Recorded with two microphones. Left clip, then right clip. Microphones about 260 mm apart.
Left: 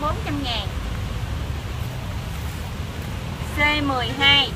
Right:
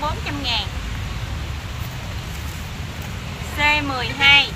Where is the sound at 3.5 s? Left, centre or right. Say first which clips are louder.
Right 2 dB; centre.